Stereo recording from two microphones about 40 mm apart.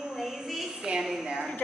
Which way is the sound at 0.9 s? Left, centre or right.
Centre.